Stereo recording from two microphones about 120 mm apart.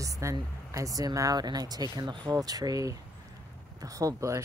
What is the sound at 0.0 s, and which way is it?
Speech, 25° right (ahead or behind).